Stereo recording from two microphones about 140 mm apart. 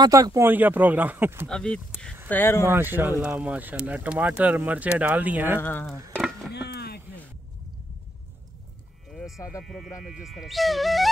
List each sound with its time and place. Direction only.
0.0 s speech: 25° right (ahead or behind)
1.5 s speech: 5° left (ahead or behind)
2.7 s speech: 15° right (ahead or behind)
5.6 s speech: 15° left (ahead or behind)
9.4 s speech: 20° left (ahead or behind)
10.2 s speech: centre (ahead or behind)